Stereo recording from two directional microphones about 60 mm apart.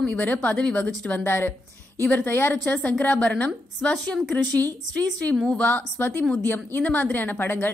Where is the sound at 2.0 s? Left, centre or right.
Left.